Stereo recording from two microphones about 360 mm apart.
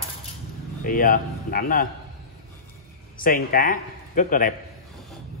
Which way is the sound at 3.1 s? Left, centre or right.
Left.